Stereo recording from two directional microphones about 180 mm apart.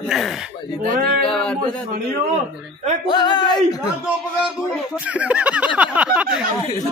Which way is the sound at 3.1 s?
25° left (ahead or behind).